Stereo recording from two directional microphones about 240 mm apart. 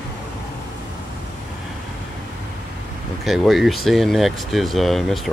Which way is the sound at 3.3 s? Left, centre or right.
Centre.